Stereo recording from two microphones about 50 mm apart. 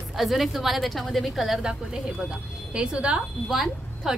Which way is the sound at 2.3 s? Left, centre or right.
Right.